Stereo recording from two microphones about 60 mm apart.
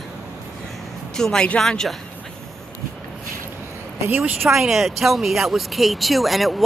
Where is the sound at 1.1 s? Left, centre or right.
Centre.